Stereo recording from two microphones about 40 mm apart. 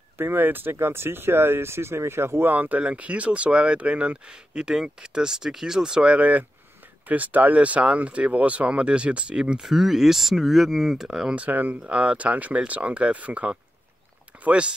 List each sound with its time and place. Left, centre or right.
0.2 s speech: right
2.5 s speech: right
2.8 s speech: right
4.2 s speech: right
6.1 s speech: right
9.6 s speech: centre
11.0 s speech: centre
11.3 s speech: right
14.3 s a sound: right